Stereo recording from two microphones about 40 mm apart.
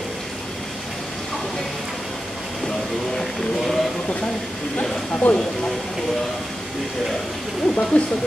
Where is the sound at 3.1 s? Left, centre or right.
Centre.